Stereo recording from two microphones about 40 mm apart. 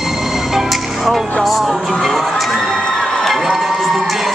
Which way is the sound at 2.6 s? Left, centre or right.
Centre.